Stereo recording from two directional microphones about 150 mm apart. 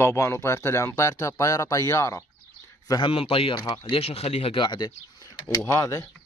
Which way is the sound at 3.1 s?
40° left (ahead or behind).